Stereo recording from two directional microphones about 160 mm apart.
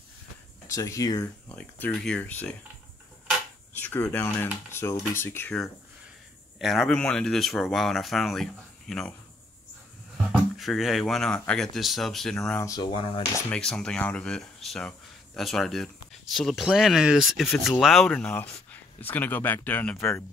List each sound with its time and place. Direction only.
0.7 s speech: 20° left (ahead or behind)
1.5 s speech: 5° left (ahead or behind)
4.1 s speech: 10° left (ahead or behind)
6.6 s speech: centre (ahead or behind)
10.3 s speech: centre (ahead or behind)
12.5 s speech: 20° left (ahead or behind)
13.5 s speech: 5° left (ahead or behind)